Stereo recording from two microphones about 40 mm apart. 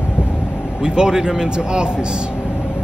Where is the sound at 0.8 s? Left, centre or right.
Centre.